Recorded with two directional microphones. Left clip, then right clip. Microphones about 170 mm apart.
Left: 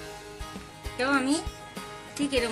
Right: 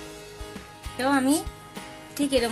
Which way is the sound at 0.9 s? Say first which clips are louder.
Right 2 dB; 50° right (ahead or behind).